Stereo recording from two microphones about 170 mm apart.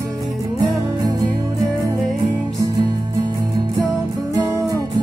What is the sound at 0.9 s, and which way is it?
Music, 20° right (ahead or behind).